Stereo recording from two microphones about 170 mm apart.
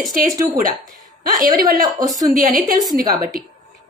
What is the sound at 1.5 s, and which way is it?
Speech, 20° right (ahead or behind).